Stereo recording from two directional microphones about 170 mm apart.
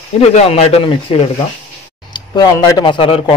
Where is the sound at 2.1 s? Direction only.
25° left (ahead or behind).